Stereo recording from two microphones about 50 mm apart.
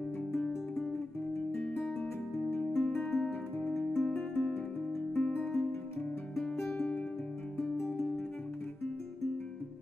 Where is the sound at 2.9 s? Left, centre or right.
Centre.